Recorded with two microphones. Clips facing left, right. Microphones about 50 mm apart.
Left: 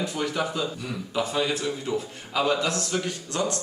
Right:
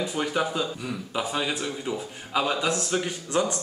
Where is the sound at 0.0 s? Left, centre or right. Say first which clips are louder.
Right 1 dB; centre.